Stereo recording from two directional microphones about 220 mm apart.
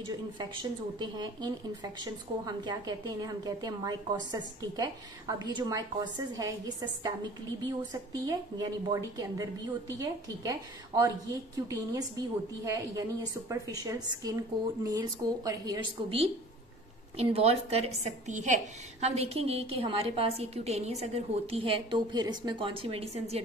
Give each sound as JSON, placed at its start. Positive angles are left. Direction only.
{"t": 0.4, "sound": "a woman's voice", "side_deg": -20}